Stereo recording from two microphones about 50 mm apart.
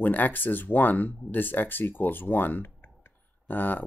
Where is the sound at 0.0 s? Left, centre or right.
Left.